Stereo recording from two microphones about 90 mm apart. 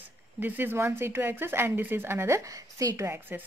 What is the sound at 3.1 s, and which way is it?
Speech, 20° right (ahead or behind).